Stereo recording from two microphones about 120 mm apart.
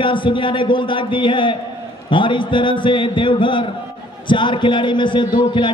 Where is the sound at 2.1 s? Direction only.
45° left (ahead or behind).